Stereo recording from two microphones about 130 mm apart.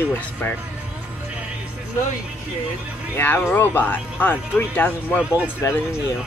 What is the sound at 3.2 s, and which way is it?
Speech, 15° left (ahead or behind).